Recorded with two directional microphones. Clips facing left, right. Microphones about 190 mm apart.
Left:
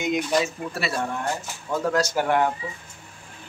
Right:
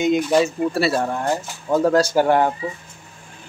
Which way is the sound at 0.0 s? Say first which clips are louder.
Right 6 dB; 30° right (ahead or behind).